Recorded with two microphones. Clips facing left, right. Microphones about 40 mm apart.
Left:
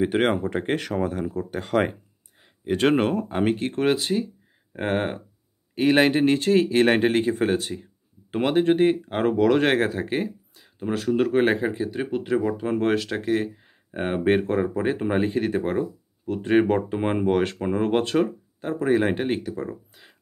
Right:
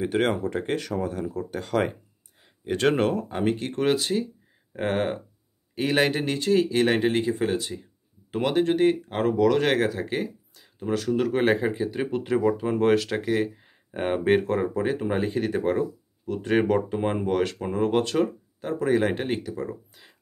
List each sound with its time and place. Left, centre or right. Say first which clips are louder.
0.0 s speech: left 2 dB; left
0.7 s speech: left 3 dB; left
1.3 s speech: left 3 dB; centre; by 7.7 s left
8.3 s speech: left 2 dB; left
8.5 s speech: left 2 dB; centre
11.3 s speech: left 1 dB; centre
14.7 s speech: left 2 dB; left
19.7 s a sound: even; centre